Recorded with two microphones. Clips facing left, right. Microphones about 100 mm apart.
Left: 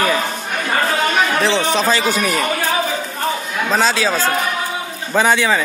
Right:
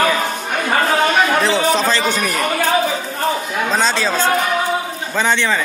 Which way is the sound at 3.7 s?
5° left (ahead or behind).